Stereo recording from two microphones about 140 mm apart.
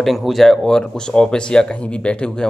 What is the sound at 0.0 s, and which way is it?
Speech, centre (ahead or behind).